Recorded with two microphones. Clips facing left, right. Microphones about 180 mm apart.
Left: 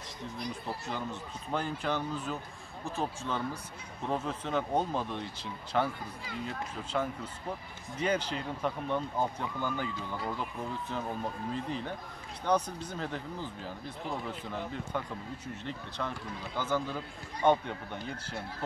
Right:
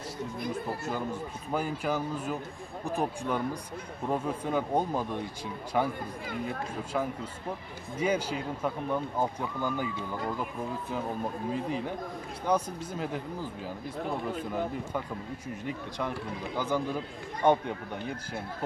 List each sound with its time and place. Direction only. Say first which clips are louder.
0.4 s speech: right 4 dB; 50° right (ahead or behind)
0.9 s speech: right 4 dB; 10° right (ahead or behind)
6.2 s speech: right 4 dB; 55° right (ahead or behind)
6.8 s speech: right 1 dB; 10° right (ahead or behind)
11.5 s speech: right 4 dB; 10° right (ahead or behind)
15.0 s speech: right 2 dB; 10° right (ahead or behind)